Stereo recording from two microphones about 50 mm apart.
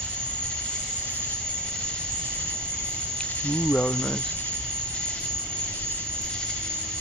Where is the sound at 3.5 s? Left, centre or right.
Centre.